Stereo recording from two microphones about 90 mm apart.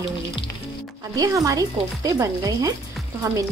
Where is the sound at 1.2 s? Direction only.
40° right (ahead or behind).